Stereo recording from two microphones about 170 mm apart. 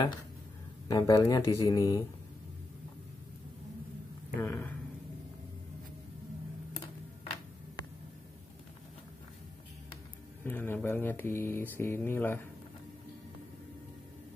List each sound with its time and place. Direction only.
0.8 s speech: 20° left (ahead or behind)
4.4 s speech: 15° left (ahead or behind)
10.4 s speech: 10° left (ahead or behind)